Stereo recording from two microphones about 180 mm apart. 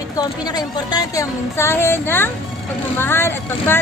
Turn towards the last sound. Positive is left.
turn(degrees=10)  # may be behind; listen again after turning